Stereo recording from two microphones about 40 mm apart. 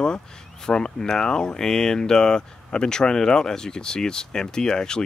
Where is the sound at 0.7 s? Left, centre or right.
Centre.